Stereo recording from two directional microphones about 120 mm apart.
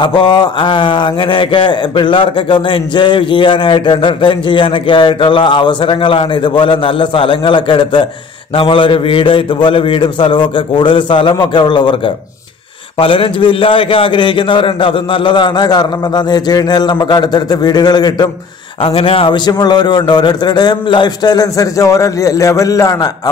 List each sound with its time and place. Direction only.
0.0 s a man's voice: 40° left (ahead or behind)
13.0 s a man's voice: 50° left (ahead or behind)
18.9 s a man's voice: 50° left (ahead or behind); by 23.3 s 30° left (ahead or behind)